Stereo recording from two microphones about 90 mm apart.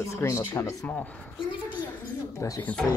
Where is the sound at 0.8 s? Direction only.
15° left (ahead or behind).